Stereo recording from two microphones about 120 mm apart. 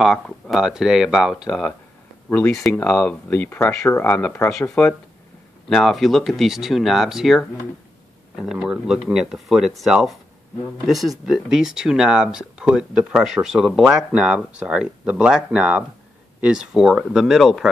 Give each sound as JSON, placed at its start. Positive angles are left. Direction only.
{"t": 0.0, "sound": "speech", "side_deg": 0}
{"t": 2.2, "sound": "speech", "side_deg": 15}
{"t": 2.5, "sound": "speech", "side_deg": 5}
{"t": 2.8, "sound": "speech", "side_deg": 15}